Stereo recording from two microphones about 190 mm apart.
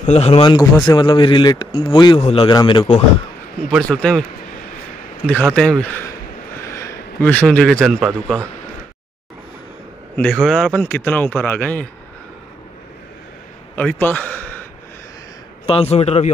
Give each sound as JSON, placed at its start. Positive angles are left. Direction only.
{"t": 0.0, "sound": "speech", "side_deg": 35}
{"t": 3.6, "sound": "a man's voice", "side_deg": 5}
{"t": 5.2, "sound": "a man's voice", "side_deg": 5}
{"t": 10.1, "sound": "speech", "side_deg": 5}
{"t": 13.7, "sound": "a man's voice", "side_deg": 10}
{"t": 15.6, "sound": "speech", "side_deg": 30}